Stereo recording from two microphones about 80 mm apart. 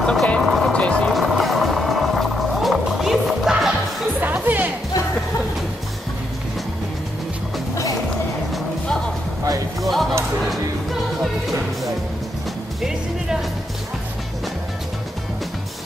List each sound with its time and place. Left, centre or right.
0.0 s vehicle: centre
0.4 s music: centre
0.7 s music: centre
1.1 s music: centre
4.2 s music: right
9.8 s music: centre